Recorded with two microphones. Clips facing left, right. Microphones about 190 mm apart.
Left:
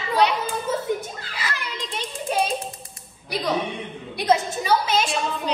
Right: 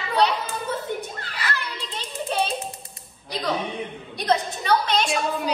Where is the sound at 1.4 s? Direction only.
15° left (ahead or behind).